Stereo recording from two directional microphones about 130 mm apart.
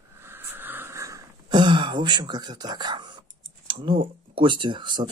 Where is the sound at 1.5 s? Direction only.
40° right (ahead or behind).